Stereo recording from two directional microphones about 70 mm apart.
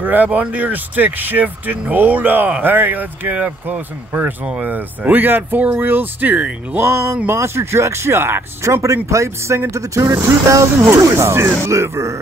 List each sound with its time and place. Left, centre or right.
0.0 s speech: right
6.8 s speech: right
8.8 s speech: right